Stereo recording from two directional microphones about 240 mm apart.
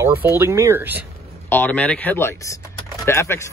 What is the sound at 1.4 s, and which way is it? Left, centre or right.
Speech, centre.